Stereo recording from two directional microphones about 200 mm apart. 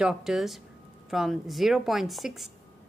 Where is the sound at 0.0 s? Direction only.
Centre (ahead or behind).